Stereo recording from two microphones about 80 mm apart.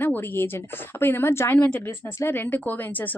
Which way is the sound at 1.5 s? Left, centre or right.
Centre.